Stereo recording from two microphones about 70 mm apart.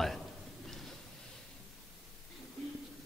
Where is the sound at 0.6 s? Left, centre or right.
Centre.